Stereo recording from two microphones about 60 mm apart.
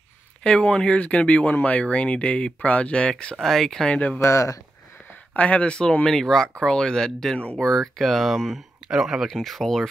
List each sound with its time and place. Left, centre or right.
0.4 s speech: centre
3.3 s speech: centre
3.9 s speech: centre
4.2 s speech: left
5.3 s speech: left; by 9.8 s centre